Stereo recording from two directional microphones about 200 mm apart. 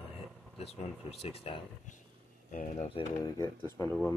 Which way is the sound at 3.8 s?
15° left (ahead or behind).